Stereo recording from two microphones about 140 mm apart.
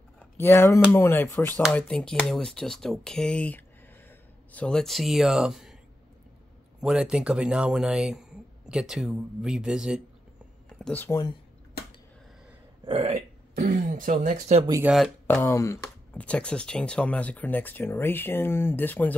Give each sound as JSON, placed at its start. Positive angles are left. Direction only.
{"t": 0.2, "sound": "speech", "side_deg": 15}
{"t": 6.8, "sound": "speech", "side_deg": -5}
{"t": 10.8, "sound": "speech", "side_deg": 10}
{"t": 11.1, "sound": "speech", "side_deg": 25}
{"t": 12.8, "sound": "speech", "side_deg": -40}
{"t": 13.1, "sound": "throat clearing", "side_deg": -65}
{"t": 14.9, "sound": "speech", "side_deg": -10}
{"t": 15.2, "sound": "speech", "side_deg": 15}